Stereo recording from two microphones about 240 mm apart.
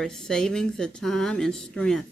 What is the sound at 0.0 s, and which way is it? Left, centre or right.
Speech, centre.